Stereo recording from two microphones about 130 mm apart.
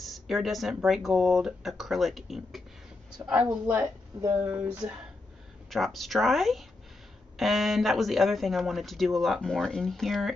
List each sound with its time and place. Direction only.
0.0 s speech: centre (ahead or behind)
3.2 s speech: 25° right (ahead or behind)
3.6 s a woman's voice: 15° right (ahead or behind)
4.4 s speech: 25° right (ahead or behind)
5.7 s speech: centre (ahead or behind)